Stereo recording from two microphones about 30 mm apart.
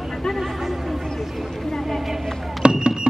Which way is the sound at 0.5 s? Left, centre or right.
Centre.